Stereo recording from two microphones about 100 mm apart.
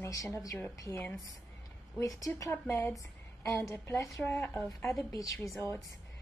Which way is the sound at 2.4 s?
25° left (ahead or behind).